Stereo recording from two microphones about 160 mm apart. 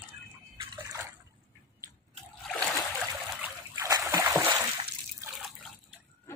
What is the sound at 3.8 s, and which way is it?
Splash, 20° right (ahead or behind).